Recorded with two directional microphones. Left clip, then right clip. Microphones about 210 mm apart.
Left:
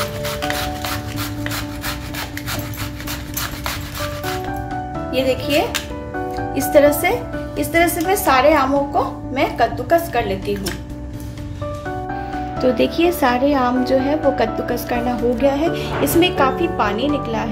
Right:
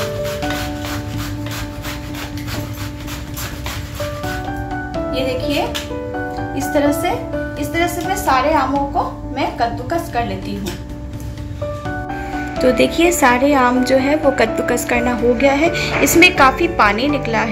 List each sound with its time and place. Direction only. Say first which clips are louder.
6.7 s a woman's voice: left 4 dB; 35° left (ahead or behind)
12.6 s a woman's voice: right 3 dB; 5° left (ahead or behind)